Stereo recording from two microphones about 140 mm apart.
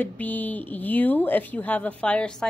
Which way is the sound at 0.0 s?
10° left (ahead or behind).